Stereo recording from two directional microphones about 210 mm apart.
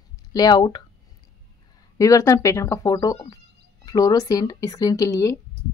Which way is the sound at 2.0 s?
15° left (ahead or behind).